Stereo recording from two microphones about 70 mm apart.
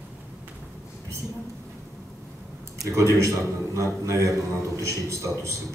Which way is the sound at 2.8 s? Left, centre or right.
Right.